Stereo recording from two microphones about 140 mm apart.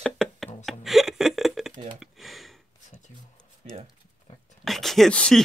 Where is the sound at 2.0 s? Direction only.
Centre (ahead or behind).